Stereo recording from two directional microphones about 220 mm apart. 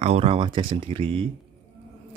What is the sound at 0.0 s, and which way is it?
Speech, 25° right (ahead or behind).